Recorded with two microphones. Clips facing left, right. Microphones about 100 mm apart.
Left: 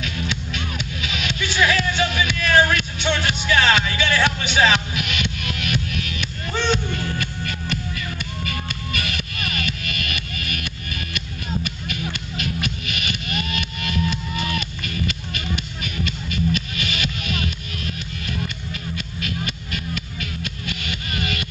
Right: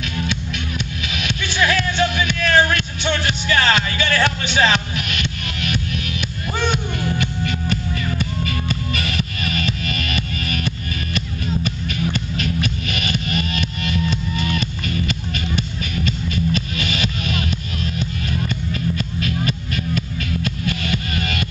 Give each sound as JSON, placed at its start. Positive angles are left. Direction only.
{"t": 1.4, "sound": "music", "side_deg": 5}
{"t": 6.5, "sound": "music", "side_deg": -10}
{"t": 7.7, "sound": "music", "side_deg": -35}